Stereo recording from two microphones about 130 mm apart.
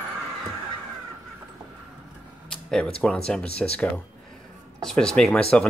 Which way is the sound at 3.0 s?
5° left (ahead or behind).